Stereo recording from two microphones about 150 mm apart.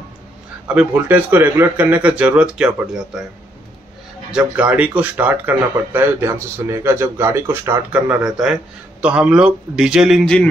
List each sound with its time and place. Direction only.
0.7 s a man's voice: 10° right (ahead or behind)
4.3 s a man's voice: 10° right (ahead or behind)